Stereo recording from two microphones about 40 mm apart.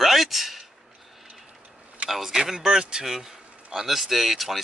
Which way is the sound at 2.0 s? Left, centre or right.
Centre.